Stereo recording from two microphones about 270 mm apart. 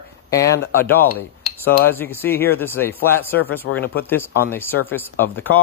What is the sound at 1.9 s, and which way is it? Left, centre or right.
Speech, centre.